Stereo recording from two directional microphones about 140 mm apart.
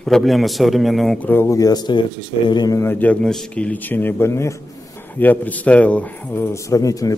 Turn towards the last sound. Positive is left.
turn(degrees=25)  # may be behind; listen again after turning